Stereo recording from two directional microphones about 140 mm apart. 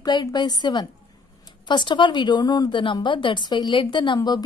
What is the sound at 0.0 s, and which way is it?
A woman's voice, 30° left (ahead or behind).